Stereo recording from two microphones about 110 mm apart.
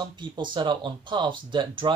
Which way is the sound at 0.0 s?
45° right (ahead or behind).